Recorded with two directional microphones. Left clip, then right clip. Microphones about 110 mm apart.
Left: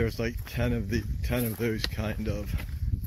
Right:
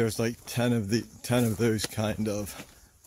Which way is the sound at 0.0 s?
40° right (ahead or behind).